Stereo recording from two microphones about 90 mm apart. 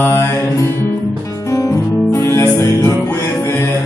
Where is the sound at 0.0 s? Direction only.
30° left (ahead or behind).